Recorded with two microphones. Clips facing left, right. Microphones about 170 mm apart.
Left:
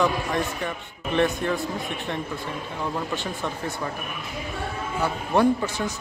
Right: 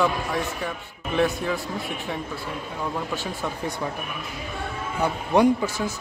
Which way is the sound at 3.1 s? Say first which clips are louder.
Even; 5° right (ahead or behind).